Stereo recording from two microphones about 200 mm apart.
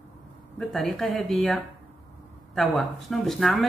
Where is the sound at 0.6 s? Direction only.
Centre (ahead or behind).